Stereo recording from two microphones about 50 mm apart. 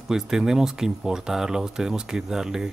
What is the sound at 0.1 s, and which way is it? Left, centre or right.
Speech, centre.